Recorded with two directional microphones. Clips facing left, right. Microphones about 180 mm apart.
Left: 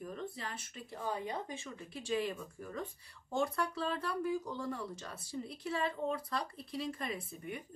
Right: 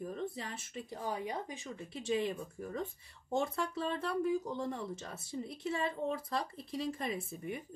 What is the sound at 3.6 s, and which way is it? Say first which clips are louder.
Speech: right 1 dB; 20° right (ahead or behind).